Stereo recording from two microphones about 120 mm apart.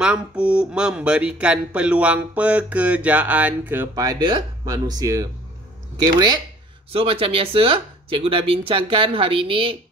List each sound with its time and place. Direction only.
0.0 s speech: 10° right (ahead or behind)
3.9 s speech: 30° right (ahead or behind)
6.9 s speech: 50° right (ahead or behind)